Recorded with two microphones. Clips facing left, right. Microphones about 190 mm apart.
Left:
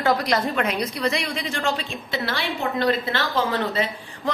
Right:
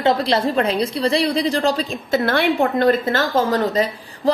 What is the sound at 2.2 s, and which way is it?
A woman's voice, 55° right (ahead or behind).